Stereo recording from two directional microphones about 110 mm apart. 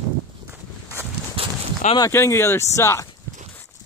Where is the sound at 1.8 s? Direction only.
90° left.